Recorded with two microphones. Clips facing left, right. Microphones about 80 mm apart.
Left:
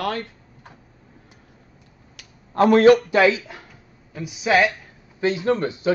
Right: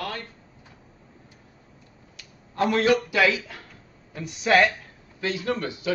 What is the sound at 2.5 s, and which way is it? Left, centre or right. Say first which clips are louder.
A man's voice: left 8 dB; left.